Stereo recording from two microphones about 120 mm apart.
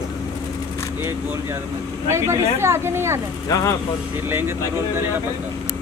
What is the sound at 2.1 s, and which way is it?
Speech, 25° right (ahead or behind).